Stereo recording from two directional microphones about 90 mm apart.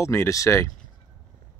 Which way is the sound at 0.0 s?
30° left (ahead or behind).